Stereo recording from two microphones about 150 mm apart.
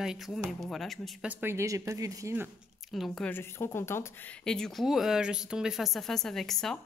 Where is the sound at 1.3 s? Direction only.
15° right (ahead or behind).